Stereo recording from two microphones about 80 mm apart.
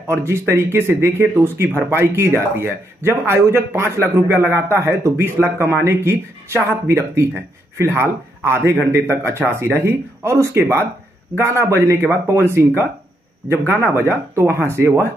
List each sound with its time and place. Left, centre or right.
0.0 s a man's voice: right